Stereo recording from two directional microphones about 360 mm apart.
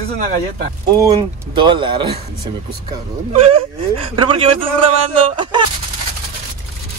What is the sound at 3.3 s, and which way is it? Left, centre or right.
Speech, centre.